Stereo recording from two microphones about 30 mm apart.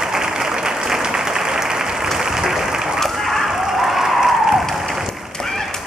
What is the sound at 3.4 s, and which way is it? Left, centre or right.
Applause, centre.